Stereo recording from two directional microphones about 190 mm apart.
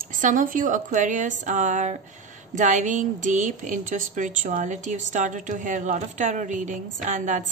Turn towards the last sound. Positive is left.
turn(degrees=-40)  # may be behind; listen again after turning